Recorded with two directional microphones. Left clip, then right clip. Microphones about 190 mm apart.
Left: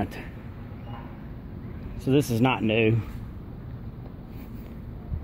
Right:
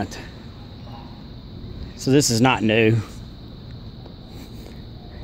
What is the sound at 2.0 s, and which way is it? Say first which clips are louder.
Speech: right 6 dB; 30° right (ahead or behind).